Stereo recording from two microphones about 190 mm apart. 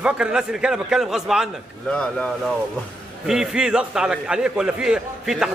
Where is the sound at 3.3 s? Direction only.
5° right (ahead or behind).